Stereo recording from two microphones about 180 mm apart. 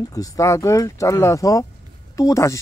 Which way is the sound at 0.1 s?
20° left (ahead or behind).